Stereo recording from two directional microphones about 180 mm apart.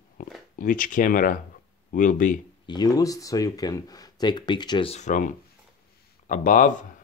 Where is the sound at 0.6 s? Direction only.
50° left (ahead or behind).